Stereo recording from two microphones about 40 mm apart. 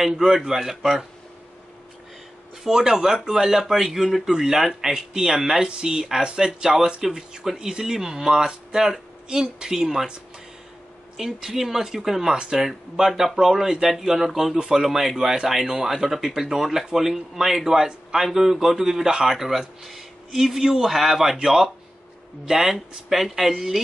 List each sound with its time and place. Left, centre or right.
0.5 s speech: centre
2.6 s speech: centre
11.1 s speech: centre